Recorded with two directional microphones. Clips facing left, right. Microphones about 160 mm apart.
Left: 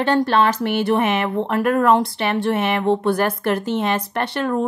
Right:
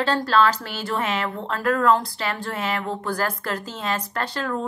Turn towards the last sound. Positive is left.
turn(degrees=20)  # may be behind; listen again after turning